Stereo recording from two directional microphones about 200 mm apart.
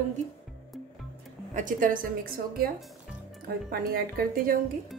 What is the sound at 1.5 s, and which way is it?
Speech, 40° right (ahead or behind).